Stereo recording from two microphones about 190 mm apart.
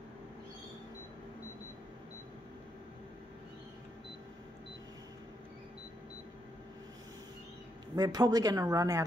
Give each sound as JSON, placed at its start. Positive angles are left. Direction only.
{"t": 7.9, "sound": "speech", "side_deg": -20}